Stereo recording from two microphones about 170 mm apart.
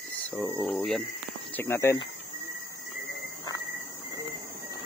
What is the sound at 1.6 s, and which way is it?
Speech, 15° left (ahead or behind).